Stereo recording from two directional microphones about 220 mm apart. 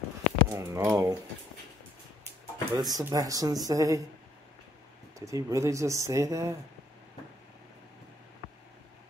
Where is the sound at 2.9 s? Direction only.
15° right (ahead or behind).